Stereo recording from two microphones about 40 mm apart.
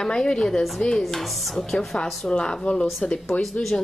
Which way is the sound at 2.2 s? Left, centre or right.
Left.